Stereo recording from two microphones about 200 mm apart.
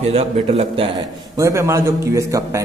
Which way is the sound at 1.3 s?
15° right (ahead or behind).